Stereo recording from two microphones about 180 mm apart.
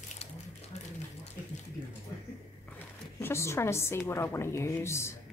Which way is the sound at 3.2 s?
15° left (ahead or behind).